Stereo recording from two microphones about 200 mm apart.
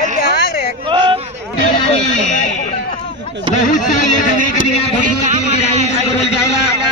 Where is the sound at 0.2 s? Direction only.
50° left (ahead or behind).